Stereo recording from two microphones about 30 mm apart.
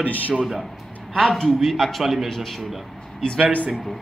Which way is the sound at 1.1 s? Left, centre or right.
Centre.